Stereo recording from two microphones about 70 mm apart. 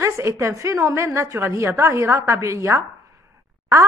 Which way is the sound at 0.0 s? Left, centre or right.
Right.